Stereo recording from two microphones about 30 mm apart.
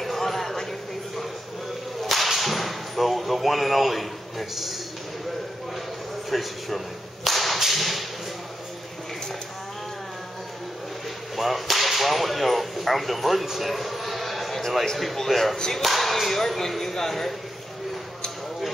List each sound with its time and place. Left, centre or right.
0.0 s a sound: centre
2.0 s whip: centre
6.3 s whip: centre
11.3 s whip: centre
13.5 s a sound: centre
15.2 s whip: centre
15.5 s speech: left
15.8 s speech: centre